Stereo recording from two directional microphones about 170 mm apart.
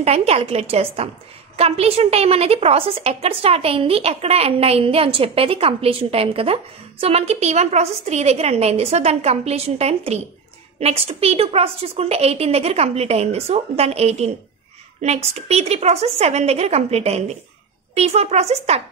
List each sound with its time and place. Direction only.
0.0 s a woman's voice: 40° right (ahead or behind)